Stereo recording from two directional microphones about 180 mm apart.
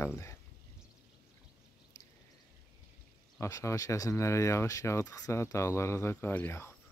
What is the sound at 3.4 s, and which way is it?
Speech, 15° left (ahead or behind).